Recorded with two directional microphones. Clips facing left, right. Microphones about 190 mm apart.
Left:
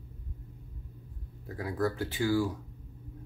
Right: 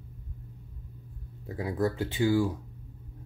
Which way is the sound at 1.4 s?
20° right (ahead or behind).